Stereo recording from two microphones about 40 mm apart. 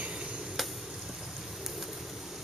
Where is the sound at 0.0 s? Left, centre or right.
Right.